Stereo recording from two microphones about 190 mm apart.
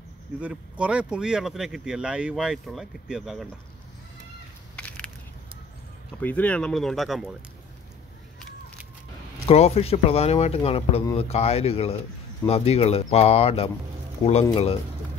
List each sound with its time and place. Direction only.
0.4 s speech: 5° right (ahead or behind)
4.7 s crushing: 5° left (ahead or behind)
6.2 s speech: 10° left (ahead or behind)
9.5 s speech: 30° left (ahead or behind)